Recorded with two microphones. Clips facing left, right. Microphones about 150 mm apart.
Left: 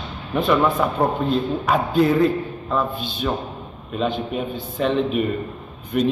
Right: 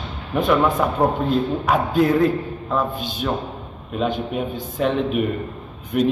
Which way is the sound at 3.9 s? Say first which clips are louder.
Even; 5° right (ahead or behind).